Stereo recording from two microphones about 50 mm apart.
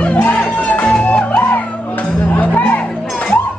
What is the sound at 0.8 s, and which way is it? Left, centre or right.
Music, centre.